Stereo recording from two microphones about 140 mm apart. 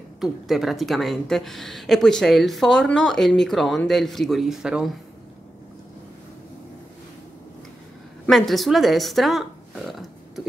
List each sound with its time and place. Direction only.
0.2 s speech: centre (ahead or behind)
8.3 s speech: centre (ahead or behind)
9.8 s burping: centre (ahead or behind)